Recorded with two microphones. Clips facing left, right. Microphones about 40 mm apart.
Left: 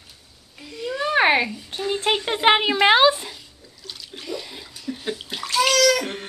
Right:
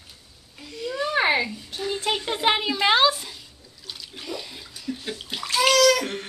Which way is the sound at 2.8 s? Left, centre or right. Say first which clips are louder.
Left 4 dB; left.